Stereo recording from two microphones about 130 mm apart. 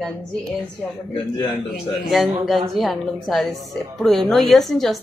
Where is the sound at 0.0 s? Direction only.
5° left (ahead or behind).